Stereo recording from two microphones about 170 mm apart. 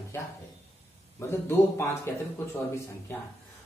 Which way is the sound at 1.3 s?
15° left (ahead or behind).